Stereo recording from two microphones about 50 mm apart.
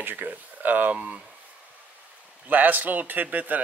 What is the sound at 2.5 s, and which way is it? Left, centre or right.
Speech, right.